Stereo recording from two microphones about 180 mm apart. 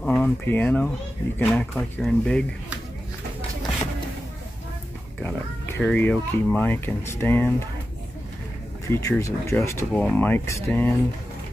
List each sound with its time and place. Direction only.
0.0 s speech: 10° left (ahead or behind)
5.2 s speech: 10° left (ahead or behind)
8.8 s speech: 20° left (ahead or behind)